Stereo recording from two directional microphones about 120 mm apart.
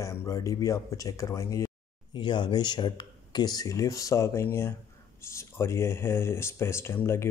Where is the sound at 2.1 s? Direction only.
40° left (ahead or behind).